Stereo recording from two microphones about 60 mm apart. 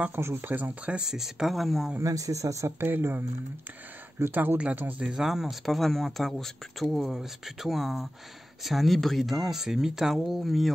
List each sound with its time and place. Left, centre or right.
0.1 s speech: right
1.0 s speech: centre
2.0 s speech: right
2.8 s speech: right
5.2 s speech: centre